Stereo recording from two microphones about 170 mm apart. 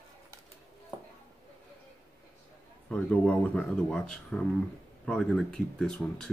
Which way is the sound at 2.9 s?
10° left (ahead or behind).